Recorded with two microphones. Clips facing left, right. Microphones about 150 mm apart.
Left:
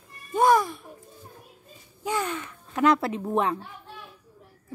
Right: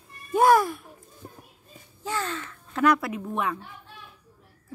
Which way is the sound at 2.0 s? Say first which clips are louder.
Left 2 dB; 15° left (ahead or behind).